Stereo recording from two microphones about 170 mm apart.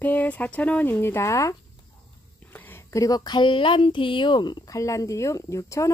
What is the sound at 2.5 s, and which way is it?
Speech, 10° left (ahead or behind).